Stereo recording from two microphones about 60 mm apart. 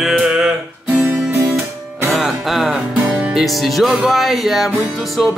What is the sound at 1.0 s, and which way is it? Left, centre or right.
Guitar, right.